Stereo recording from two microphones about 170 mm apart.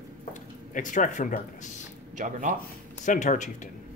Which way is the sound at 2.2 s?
50° right (ahead or behind).